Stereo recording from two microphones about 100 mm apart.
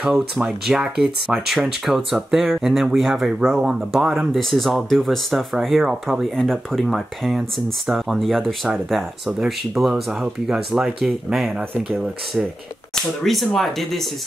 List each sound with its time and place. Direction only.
0.0 s speech: 5° right (ahead or behind)